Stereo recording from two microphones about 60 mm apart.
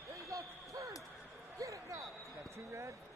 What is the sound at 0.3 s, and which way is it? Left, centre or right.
Basketball bounce, right.